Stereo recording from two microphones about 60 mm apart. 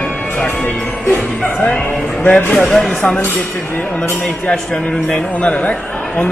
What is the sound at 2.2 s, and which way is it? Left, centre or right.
Speech, left.